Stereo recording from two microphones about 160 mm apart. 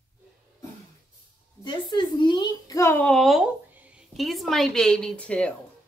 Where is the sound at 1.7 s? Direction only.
30° left (ahead or behind).